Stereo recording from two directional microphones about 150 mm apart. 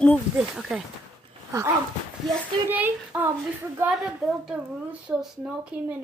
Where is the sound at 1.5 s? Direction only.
20° right (ahead or behind).